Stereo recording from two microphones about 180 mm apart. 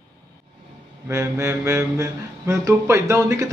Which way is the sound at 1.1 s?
15° right (ahead or behind).